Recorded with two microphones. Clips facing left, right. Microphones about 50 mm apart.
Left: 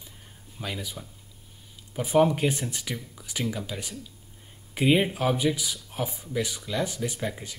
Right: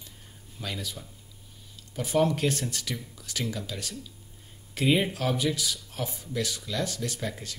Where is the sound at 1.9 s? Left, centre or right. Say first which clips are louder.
Left 3 dB; centre.